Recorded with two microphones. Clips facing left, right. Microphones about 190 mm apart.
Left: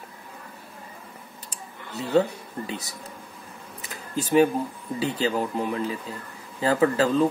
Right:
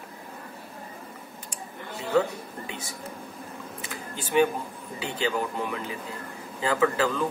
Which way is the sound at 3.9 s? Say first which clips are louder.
Left 5 dB; 40° left (ahead or behind).